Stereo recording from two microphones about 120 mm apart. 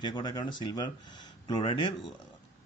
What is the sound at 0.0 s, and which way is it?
Speech, 40° left (ahead or behind).